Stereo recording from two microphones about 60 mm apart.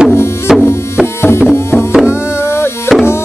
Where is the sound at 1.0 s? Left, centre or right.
Left.